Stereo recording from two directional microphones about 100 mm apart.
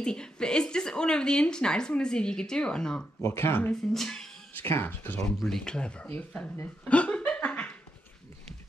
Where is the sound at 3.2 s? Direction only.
25° left (ahead or behind).